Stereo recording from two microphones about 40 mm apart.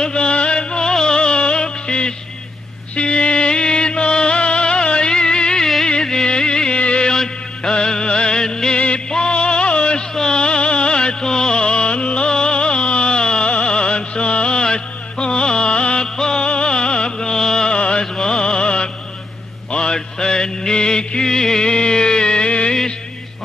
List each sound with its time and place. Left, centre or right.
0.0 s music: left
7.1 s music: centre
8.7 s music: left
17.7 s music: left
18.0 s music: centre
18.4 s music: left